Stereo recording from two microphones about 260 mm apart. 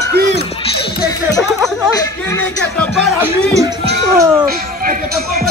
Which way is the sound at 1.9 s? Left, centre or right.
Centre.